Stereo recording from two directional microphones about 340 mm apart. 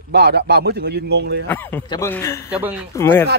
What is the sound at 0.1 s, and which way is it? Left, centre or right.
Speech, right.